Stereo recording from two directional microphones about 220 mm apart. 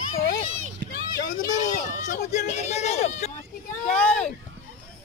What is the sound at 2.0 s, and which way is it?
Speech, 30° left (ahead or behind).